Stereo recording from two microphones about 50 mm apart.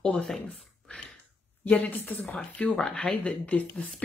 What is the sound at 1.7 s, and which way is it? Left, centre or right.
Speech, left.